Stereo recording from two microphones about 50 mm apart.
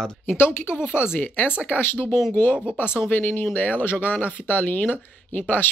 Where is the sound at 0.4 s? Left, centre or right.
Left.